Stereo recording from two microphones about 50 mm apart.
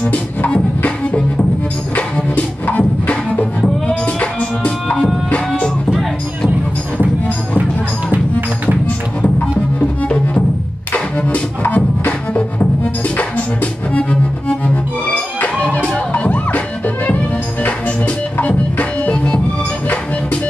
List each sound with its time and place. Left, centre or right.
0.0 s music: left
8.1 s music: right
8.8 s music: left
10.0 s music: left
16.1 s music: left